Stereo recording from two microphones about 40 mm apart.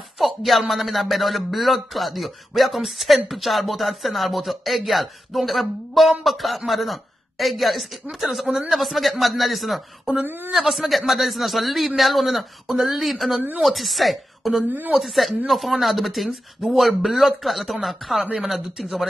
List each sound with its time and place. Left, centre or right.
0.2 s speech: centre
14.7 s a woman's voice: right
15.0 s speech: centre